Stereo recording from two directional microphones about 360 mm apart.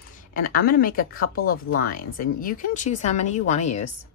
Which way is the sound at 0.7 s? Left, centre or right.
Left.